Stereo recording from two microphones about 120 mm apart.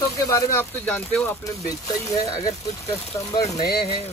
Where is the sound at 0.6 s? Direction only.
15° left (ahead or behind).